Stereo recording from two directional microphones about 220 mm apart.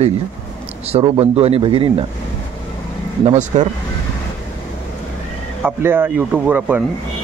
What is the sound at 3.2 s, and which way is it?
Speech, 35° right (ahead or behind).